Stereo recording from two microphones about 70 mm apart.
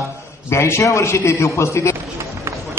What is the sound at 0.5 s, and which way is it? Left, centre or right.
A man's voice, left.